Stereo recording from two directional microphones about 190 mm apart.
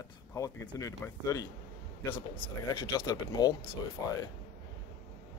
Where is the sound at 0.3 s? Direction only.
15° left (ahead or behind).